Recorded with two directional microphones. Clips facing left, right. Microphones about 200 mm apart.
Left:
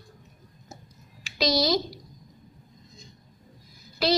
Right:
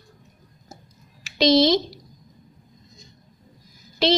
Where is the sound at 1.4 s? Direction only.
25° right (ahead or behind).